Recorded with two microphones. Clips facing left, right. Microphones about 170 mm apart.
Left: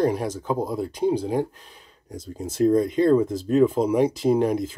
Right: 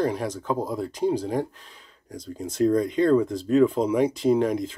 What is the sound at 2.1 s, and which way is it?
Speech, 5° left (ahead or behind).